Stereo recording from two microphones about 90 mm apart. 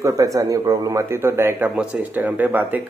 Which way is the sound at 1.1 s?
30° right (ahead or behind).